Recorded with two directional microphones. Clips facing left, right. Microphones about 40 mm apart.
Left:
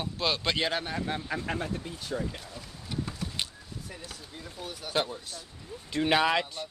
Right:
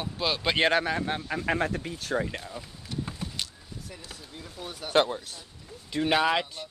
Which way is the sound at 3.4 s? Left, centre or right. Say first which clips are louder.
Left 2 dB; left.